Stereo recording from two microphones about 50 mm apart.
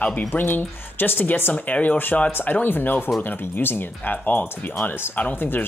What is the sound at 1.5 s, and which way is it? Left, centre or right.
Speech, left.